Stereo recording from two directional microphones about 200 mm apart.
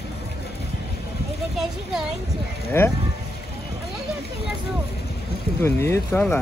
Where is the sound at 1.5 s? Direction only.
Centre (ahead or behind).